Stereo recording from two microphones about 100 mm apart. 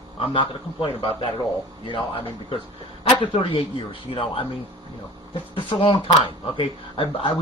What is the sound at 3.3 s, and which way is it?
Speech, 60° left (ahead or behind).